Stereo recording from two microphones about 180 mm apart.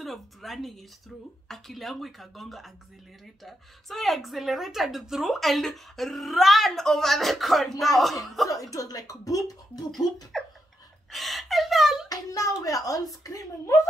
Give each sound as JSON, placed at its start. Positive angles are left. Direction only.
{"t": 0.0, "sound": "speech", "side_deg": 0}
{"t": 8.5, "sound": "speech", "side_deg": 20}
{"t": 10.3, "sound": "a sound", "side_deg": 0}
{"t": 11.1, "sound": "speech", "side_deg": 0}
{"t": 12.1, "sound": "speech", "side_deg": 20}